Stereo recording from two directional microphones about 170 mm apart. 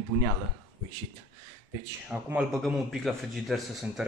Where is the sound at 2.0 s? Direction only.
10° right (ahead or behind).